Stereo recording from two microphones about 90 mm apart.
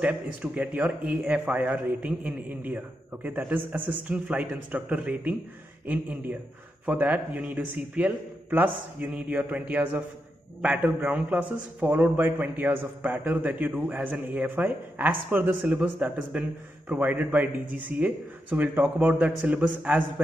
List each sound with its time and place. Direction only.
0.0 s a man's voice: 10° right (ahead or behind)